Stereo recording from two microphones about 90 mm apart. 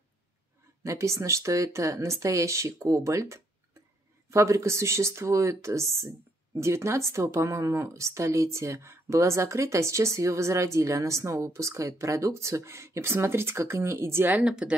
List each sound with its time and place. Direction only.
0.8 s speech: 35° right (ahead or behind)
14.4 s speech: 10° right (ahead or behind)